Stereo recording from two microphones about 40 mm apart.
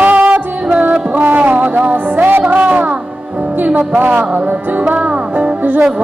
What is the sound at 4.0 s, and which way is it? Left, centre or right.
Music, right.